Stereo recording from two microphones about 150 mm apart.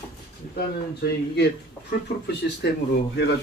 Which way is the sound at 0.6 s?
90° left.